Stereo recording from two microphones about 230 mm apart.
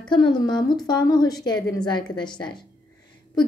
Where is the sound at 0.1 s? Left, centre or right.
Centre.